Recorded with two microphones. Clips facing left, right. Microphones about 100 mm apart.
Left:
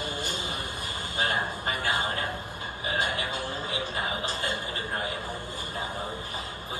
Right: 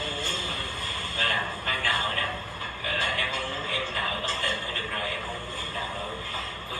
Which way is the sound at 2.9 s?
20° left (ahead or behind).